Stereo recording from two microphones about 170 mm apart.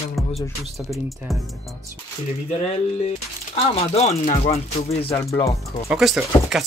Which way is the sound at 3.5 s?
40° left (ahead or behind).